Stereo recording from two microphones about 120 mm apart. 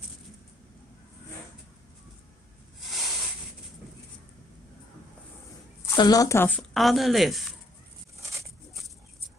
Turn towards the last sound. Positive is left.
turn(degrees=0)  # may be behind; listen again after turning